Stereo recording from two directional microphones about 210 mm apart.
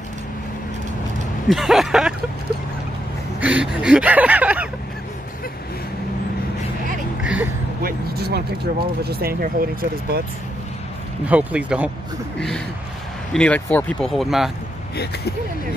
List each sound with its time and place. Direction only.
1.5 s speech: centre (ahead or behind)
3.3 s speech: 5° right (ahead or behind)
7.2 s a sound: 5° right (ahead or behind)
7.8 s speech: 50° right (ahead or behind)
11.2 s speech: 5° right (ahead or behind)